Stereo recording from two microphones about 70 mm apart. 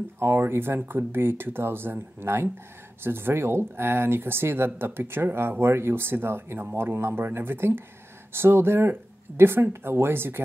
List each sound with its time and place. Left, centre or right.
0.2 s speech: right